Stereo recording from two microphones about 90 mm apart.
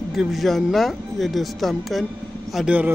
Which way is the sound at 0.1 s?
Centre (ahead or behind).